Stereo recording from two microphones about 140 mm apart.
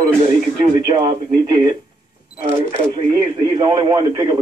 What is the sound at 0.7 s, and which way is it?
Speech, 35° right (ahead or behind).